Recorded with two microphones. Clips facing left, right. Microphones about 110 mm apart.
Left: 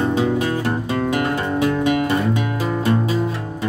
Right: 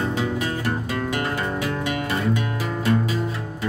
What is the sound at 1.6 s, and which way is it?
Music, 25° left (ahead or behind).